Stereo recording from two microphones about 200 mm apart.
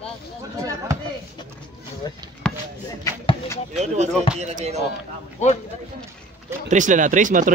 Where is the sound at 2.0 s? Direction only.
20° left (ahead or behind).